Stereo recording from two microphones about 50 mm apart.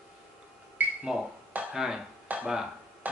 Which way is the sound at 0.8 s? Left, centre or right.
Right.